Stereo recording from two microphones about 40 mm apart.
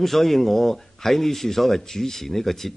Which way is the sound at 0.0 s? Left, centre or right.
Centre.